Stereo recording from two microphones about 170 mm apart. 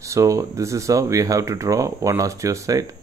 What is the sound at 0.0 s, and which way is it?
Speech, 20° right (ahead or behind).